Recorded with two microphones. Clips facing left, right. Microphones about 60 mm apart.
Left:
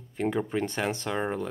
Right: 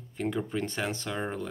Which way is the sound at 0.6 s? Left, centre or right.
Centre.